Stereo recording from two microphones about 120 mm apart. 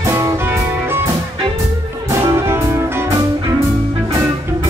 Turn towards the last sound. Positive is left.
turn(degrees=-20)  # may be behind; listen again after turning